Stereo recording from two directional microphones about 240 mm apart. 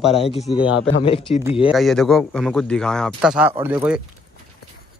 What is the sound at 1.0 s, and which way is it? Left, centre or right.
Speech, left.